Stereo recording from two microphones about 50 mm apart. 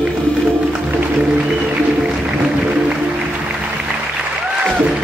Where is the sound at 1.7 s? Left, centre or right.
Centre.